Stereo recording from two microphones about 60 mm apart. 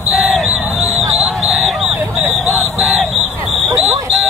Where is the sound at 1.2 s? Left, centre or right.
Centre.